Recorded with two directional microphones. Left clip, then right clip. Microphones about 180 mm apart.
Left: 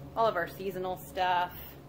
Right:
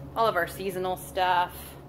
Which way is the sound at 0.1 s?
10° right (ahead or behind).